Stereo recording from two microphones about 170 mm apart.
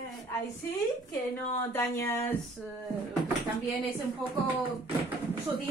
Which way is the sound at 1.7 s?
15° left (ahead or behind).